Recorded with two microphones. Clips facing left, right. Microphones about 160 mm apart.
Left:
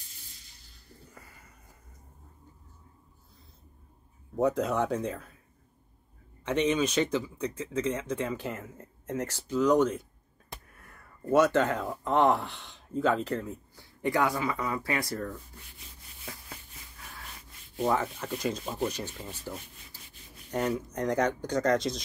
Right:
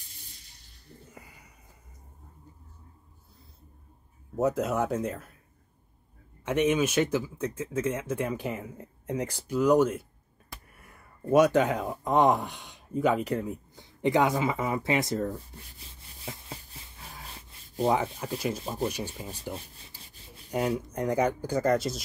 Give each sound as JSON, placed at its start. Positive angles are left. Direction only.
{"t": 1.0, "sound": "a sound", "side_deg": -20}
{"t": 4.4, "sound": "speech", "side_deg": -5}
{"t": 6.4, "sound": "speech", "side_deg": -10}
{"t": 10.7, "sound": "a sound", "side_deg": -10}
{"t": 11.2, "sound": "speech", "side_deg": -15}
{"t": 16.3, "sound": "rub", "side_deg": -25}
{"t": 17.9, "sound": "speech", "side_deg": -15}
{"t": 19.9, "sound": "rub", "side_deg": -15}
{"t": 20.5, "sound": "speech", "side_deg": -10}